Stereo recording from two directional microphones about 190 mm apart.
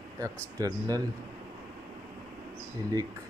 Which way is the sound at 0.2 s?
15° right (ahead or behind).